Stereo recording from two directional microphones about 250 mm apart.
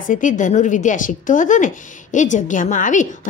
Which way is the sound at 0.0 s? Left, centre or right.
Left.